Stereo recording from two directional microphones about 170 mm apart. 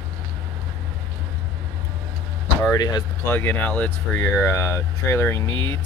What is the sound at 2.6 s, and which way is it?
Speech, 20° left (ahead or behind).